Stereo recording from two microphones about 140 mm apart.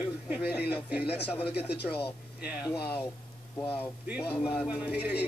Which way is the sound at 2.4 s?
5° right (ahead or behind).